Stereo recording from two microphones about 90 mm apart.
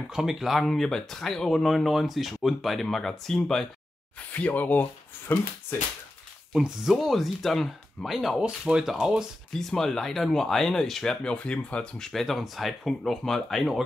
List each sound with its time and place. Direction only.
0.1 s speech: 5° right (ahead or behind)
4.3 s speech: 15° left (ahead or behind)
6.5 s speech: 5° right (ahead or behind)
9.5 s speech: 5° left (ahead or behind)